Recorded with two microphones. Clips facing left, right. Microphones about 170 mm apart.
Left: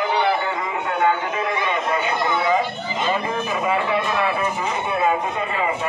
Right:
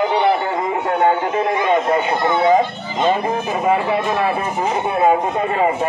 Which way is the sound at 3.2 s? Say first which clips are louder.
Right 4 dB; 45° right (ahead or behind).